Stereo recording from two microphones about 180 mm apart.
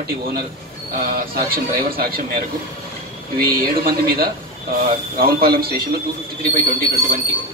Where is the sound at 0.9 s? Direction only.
55° right (ahead or behind).